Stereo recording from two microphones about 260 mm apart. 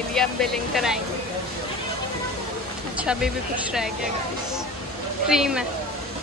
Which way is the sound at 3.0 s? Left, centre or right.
Centre.